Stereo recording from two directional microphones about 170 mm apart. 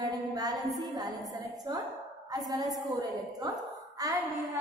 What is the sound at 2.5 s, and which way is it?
A woman's voice, 25° right (ahead or behind).